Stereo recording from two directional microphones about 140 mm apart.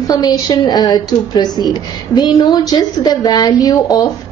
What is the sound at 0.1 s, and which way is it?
A woman's voice, 30° left (ahead or behind).